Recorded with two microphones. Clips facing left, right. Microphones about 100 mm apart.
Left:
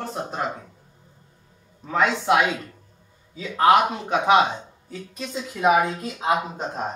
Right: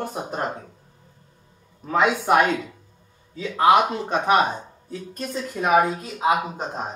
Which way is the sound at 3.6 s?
5° right (ahead or behind).